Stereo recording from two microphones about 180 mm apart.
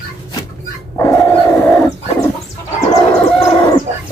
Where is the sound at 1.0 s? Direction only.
15° left (ahead or behind).